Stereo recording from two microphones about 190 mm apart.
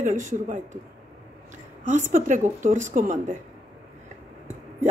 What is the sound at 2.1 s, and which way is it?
A woman's voice, 40° right (ahead or behind).